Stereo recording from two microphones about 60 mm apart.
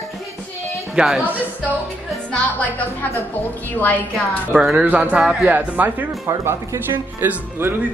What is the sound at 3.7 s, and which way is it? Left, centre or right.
Speech, left.